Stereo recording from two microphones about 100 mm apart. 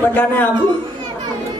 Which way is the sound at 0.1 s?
20° left (ahead or behind).